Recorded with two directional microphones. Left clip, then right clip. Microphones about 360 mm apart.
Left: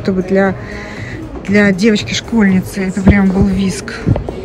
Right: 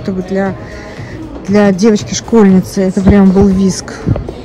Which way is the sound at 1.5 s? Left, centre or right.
Centre.